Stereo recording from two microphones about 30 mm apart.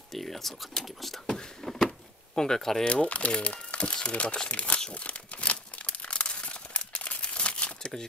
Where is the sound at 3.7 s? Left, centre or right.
Left.